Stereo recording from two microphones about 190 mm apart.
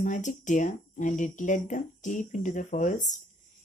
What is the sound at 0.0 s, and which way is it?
A woman's voice, 40° left (ahead or behind).